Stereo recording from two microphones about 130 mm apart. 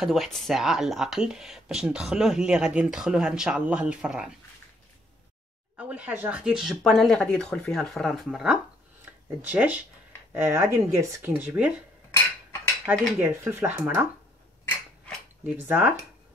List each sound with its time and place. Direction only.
0.0 s speech: centre (ahead or behind)
5.8 s speech: 10° right (ahead or behind)
12.9 s speech: 10° right (ahead or behind)
15.4 s speech: 15° right (ahead or behind)